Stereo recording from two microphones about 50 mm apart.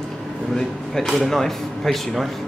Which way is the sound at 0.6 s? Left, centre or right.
Centre.